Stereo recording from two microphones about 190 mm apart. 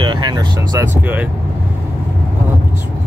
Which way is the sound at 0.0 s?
25° right (ahead or behind).